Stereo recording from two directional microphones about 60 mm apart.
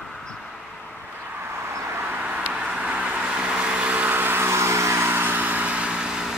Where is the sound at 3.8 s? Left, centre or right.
Right.